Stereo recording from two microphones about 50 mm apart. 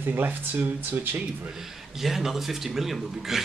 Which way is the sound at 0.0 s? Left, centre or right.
Right.